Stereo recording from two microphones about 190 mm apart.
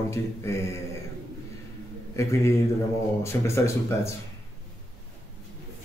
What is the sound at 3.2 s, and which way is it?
Speech, 15° left (ahead or behind).